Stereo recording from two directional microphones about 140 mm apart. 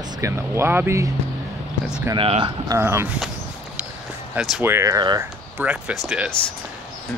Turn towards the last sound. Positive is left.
turn(degrees=-5)  # may be behind; listen again after turning